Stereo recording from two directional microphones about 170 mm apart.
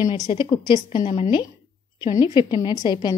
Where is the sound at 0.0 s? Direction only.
25° left (ahead or behind).